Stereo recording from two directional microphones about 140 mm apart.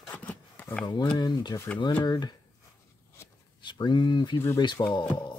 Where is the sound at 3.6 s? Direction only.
35° left (ahead or behind).